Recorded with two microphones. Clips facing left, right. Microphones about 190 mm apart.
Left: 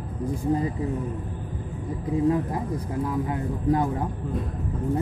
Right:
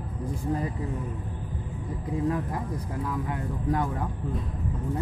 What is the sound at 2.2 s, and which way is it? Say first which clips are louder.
Speech: left 5 dB; 25° left (ahead or behind).